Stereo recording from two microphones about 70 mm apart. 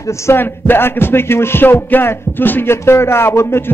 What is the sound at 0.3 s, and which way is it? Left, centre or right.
A man's voice, left.